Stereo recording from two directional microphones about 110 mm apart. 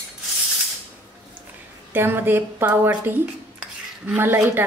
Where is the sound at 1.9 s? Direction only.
20° right (ahead or behind).